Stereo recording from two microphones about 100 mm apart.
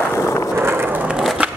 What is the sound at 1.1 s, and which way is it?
Skateboard, 5° right (ahead or behind).